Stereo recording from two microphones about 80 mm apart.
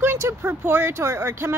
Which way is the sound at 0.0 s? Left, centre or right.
Right.